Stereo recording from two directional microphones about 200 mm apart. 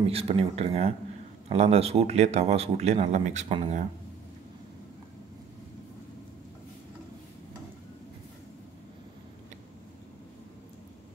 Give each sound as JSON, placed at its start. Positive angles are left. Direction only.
{"t": 0.0, "sound": "speech", "side_deg": -30}